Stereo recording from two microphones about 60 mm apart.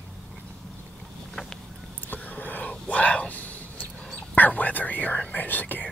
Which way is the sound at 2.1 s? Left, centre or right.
Left.